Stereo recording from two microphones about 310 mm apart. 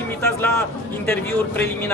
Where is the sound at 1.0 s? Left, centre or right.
Centre.